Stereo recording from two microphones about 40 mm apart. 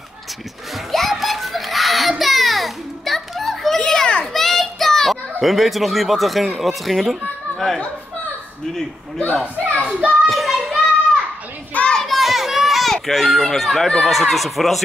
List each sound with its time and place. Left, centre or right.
0.9 s children playing: centre
4.4 s a child's voice: centre
9.2 s a woman's voice: left
10.2 s a sound: centre
11.9 s a sound: centre
12.2 s children playing: centre
13.1 s speech: centre